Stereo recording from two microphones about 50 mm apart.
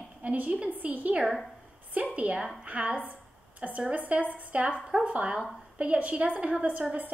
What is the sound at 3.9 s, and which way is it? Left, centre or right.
A woman's voice, right.